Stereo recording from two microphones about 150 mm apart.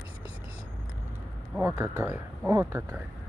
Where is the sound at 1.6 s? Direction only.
20° right (ahead or behind).